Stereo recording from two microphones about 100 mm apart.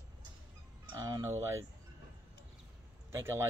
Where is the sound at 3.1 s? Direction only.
25° right (ahead or behind).